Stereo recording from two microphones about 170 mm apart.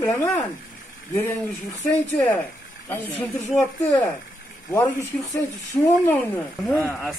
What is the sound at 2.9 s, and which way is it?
Speech, 10° left (ahead or behind).